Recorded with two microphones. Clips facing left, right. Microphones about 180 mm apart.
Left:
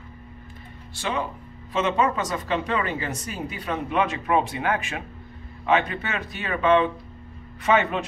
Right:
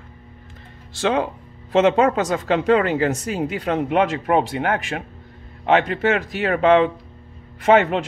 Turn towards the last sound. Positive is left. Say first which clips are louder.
# right 6 dB
turn(degrees=-75)  # may be behind; listen again after turning